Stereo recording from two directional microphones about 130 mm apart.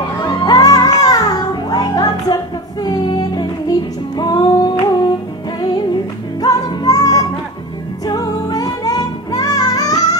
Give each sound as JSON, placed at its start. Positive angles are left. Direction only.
{"t": 0.2, "sound": "music", "side_deg": 35}
{"t": 6.4, "sound": "music", "side_deg": 30}